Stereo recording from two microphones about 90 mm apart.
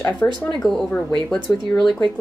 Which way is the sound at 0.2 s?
20° left (ahead or behind).